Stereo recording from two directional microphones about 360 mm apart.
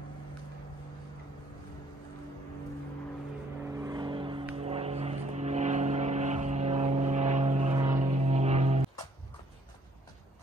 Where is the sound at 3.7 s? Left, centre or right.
Centre.